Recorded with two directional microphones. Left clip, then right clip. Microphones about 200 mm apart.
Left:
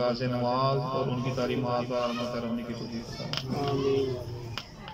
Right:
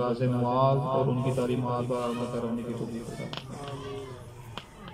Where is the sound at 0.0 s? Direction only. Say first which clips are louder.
Even; 20° right (ahead or behind).